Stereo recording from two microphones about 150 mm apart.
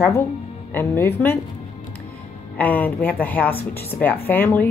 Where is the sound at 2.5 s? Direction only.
10° left (ahead or behind).